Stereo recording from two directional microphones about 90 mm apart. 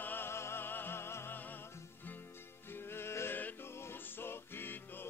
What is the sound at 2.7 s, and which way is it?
Music, 25° left (ahead or behind).